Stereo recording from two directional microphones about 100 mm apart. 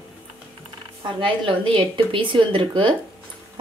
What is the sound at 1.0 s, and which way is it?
Speech, 55° right (ahead or behind).